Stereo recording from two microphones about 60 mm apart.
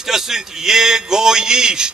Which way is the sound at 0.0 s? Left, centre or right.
Centre.